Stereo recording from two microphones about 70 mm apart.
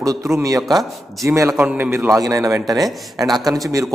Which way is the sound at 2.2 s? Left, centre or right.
Right.